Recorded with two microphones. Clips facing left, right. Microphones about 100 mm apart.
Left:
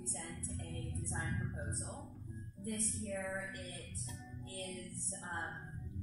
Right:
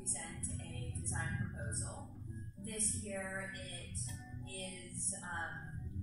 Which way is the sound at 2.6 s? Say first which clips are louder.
Left 3 dB; 15° left (ahead or behind).